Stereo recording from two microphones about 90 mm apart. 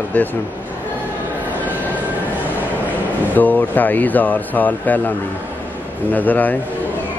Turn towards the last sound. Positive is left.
turn(degrees=20)  # may be behind; listen again after turning